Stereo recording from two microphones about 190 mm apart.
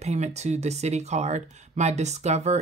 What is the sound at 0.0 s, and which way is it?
Speech, 35° right (ahead or behind).